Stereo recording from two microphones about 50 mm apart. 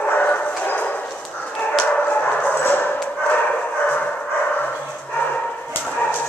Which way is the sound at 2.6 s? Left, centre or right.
Left.